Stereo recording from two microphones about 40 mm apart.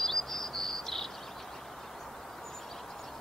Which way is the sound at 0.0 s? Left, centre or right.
Centre.